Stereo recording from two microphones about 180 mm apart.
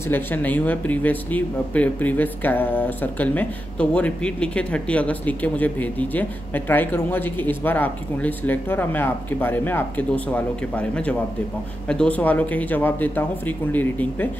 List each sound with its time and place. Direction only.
0.1 s speech: 10° left (ahead or behind)